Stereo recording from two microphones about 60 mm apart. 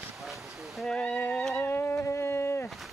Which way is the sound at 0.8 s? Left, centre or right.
Centre.